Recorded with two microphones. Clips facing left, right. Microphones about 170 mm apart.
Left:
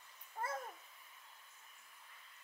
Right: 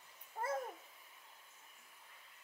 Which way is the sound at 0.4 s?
15° right (ahead or behind).